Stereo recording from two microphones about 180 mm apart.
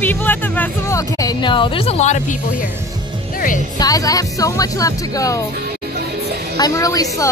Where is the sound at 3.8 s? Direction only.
20° left (ahead or behind).